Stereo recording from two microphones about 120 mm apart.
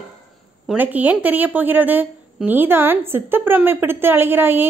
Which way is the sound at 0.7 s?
15° right (ahead or behind).